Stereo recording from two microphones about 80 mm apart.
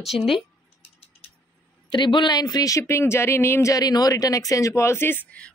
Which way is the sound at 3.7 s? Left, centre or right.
Left.